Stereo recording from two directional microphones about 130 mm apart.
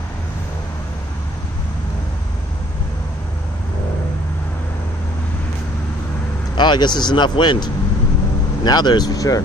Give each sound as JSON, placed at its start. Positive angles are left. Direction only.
{"t": 6.5, "sound": "speech", "side_deg": 35}